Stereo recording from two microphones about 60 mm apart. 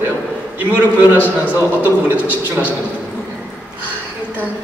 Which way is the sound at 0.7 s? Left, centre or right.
Right.